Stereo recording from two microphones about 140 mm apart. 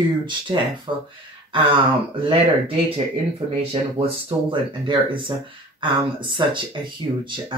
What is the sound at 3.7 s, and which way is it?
Speech, 40° right (ahead or behind).